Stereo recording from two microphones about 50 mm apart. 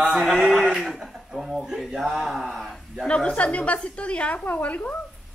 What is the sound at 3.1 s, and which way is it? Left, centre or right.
A woman's voice, centre.